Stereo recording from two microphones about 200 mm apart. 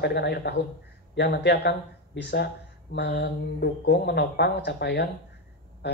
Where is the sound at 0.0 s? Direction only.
55° left (ahead or behind).